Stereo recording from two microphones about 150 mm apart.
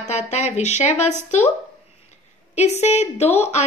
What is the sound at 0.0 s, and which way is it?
A woman's voice, 50° left (ahead or behind).